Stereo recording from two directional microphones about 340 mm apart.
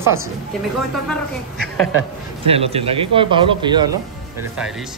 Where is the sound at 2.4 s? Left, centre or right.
Centre.